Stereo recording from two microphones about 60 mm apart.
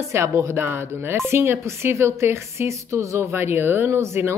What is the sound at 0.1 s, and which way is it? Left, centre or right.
Speech, right.